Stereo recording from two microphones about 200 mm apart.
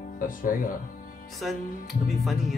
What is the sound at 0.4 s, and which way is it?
Speech, 45° left (ahead or behind).